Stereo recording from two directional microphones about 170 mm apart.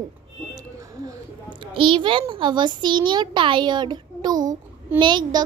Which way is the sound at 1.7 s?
30° right (ahead or behind).